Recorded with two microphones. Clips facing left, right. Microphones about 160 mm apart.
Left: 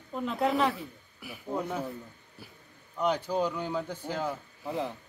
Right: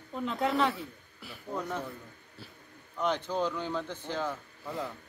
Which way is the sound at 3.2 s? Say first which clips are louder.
Left 2 dB; 10° left (ahead or behind).